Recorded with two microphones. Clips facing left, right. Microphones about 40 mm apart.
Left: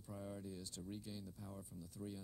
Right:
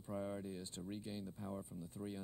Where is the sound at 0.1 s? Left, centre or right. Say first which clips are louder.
Right 6 dB; right.